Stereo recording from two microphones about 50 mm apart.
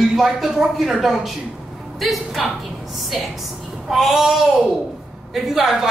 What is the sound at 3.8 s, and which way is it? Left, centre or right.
Speech, centre.